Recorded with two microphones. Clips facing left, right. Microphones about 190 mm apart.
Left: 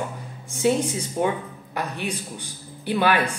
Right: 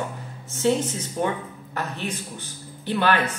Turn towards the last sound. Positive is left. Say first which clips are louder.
# left 1 dB
turn(degrees=10)  # may be behind; listen again after turning